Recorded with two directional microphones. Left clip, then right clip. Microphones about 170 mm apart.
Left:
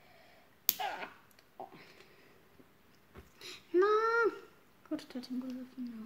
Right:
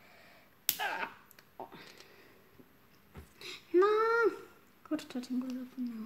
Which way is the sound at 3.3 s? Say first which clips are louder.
Right 2 dB; 15° right (ahead or behind).